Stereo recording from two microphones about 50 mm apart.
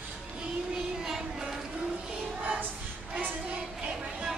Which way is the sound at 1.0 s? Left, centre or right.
Centre.